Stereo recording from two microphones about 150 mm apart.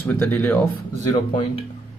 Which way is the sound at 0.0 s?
10° left (ahead or behind).